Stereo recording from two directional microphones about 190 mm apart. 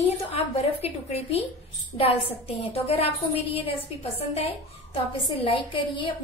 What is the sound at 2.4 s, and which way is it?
A woman's voice, 30° left (ahead or behind).